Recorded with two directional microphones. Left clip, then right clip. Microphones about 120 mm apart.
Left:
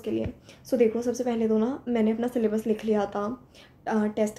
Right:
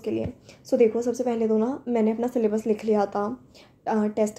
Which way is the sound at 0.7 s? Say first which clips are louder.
Right 3 dB; 30° right (ahead or behind).